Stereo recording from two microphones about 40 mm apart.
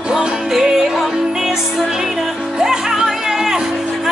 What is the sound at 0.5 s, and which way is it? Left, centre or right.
Music, centre.